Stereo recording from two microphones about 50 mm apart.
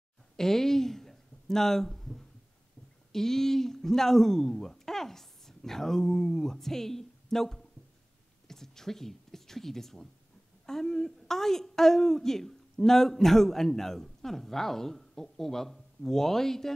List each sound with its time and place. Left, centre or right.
0.4 s a woman's voice: centre